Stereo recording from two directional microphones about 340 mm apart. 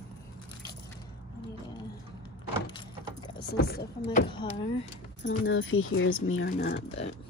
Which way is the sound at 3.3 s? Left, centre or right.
Left.